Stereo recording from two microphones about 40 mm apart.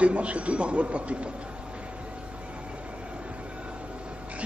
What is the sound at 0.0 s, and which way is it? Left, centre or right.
A man's voice, right.